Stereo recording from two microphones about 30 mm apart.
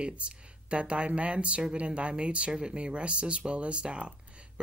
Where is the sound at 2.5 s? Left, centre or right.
Right.